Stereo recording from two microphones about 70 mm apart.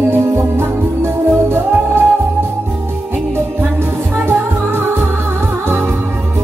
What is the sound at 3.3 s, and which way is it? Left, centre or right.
Music, right.